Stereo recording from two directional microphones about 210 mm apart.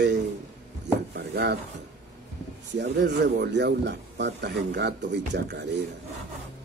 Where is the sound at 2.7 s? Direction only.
55° right (ahead or behind).